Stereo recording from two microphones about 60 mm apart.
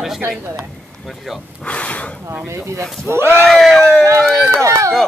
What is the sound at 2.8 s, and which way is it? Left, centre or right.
Speech, right.